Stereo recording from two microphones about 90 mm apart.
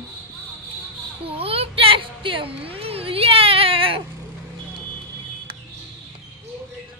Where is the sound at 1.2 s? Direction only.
90° right.